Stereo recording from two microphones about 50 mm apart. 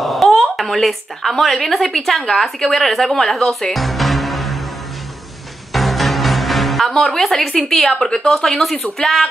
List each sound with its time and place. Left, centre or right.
0.0 s speech: centre
5.7 s speech: centre